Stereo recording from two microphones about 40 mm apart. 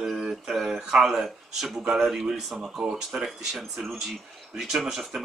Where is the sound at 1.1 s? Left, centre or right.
Centre.